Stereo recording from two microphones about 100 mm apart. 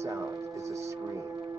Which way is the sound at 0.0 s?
30° right (ahead or behind).